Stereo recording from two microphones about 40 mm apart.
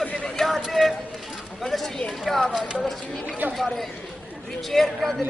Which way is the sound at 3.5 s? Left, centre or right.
Centre.